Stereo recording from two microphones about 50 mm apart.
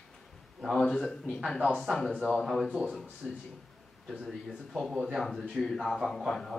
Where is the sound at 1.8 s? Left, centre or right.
Centre.